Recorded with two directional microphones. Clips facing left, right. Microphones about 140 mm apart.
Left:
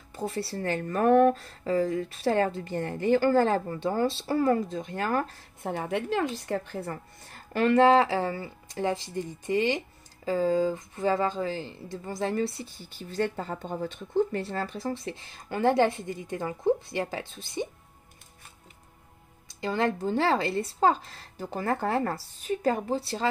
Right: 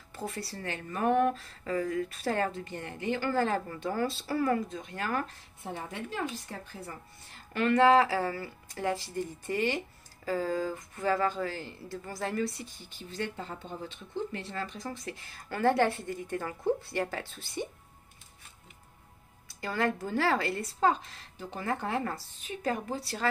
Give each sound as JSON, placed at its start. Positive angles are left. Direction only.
{"t": 0.1, "sound": "a woman's voice", "side_deg": 25}
{"t": 0.9, "sound": "speech", "side_deg": 50}
{"t": 1.6, "sound": "a woman's voice", "side_deg": 25}
{"t": 5.6, "sound": "a woman's voice", "side_deg": 65}
{"t": 7.2, "sound": "a woman's voice", "side_deg": 40}
{"t": 12.4, "sound": "speech", "side_deg": 0}
{"t": 12.9, "sound": "a woman's voice", "side_deg": 40}
{"t": 19.6, "sound": "a woman's voice", "side_deg": 20}
{"t": 20.8, "sound": "a woman's voice", "side_deg": 35}